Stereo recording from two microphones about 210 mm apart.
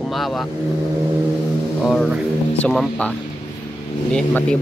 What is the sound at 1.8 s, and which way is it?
Speech, centre (ahead or behind).